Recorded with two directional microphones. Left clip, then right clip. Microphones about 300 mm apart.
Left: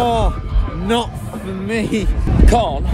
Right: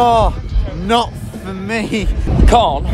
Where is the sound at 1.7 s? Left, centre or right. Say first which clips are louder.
Right 1 dB; centre.